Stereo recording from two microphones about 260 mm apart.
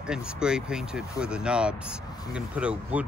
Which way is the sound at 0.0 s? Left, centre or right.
Centre.